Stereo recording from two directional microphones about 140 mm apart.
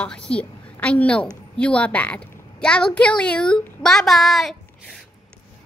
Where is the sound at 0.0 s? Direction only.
10° left (ahead or behind).